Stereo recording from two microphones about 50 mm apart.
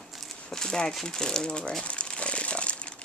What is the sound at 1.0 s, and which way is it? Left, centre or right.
Speech, centre.